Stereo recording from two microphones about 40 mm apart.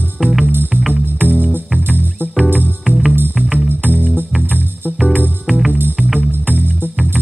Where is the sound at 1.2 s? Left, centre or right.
Right.